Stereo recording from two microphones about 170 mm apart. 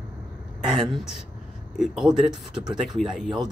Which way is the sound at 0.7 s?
Centre (ahead or behind).